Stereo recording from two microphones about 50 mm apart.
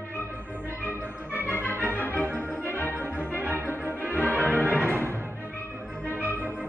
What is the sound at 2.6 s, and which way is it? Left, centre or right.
Music, left.